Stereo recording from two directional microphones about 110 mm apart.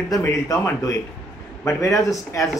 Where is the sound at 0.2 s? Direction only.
30° left (ahead or behind).